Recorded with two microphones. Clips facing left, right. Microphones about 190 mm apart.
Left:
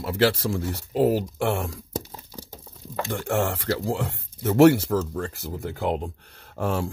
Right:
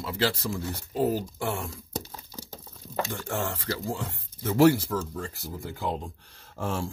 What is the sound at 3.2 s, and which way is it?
Speech, 75° left (ahead or behind).